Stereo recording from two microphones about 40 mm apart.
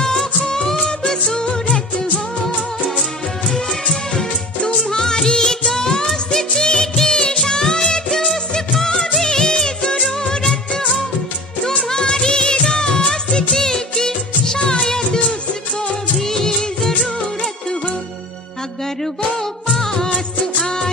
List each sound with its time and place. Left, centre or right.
0.0 s music: centre
0.5 s music of bollywood: centre
4.9 s music of bollywood: centre
14.8 s music: centre
16.2 s music of bollywood: centre
19.7 s music: centre